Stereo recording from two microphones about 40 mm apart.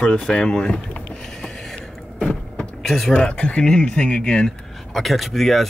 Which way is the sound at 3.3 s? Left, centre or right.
Left.